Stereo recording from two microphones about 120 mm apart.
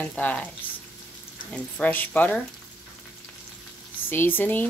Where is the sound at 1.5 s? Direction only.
15° left (ahead or behind).